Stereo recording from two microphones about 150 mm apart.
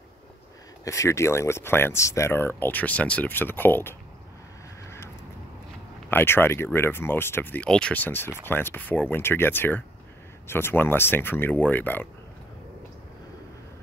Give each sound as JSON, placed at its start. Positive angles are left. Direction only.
{"t": 0.8, "sound": "speech", "side_deg": 20}
{"t": 4.8, "sound": "vehicle", "side_deg": 15}
{"t": 6.0, "sound": "speech", "side_deg": 15}